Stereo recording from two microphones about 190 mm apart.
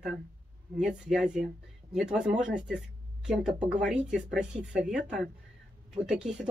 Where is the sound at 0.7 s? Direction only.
5° right (ahead or behind).